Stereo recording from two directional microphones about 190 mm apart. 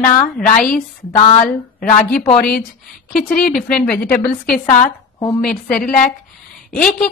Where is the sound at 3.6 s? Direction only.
5° left (ahead or behind).